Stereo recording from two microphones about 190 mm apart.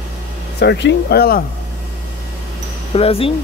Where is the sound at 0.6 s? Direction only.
65° left (ahead or behind).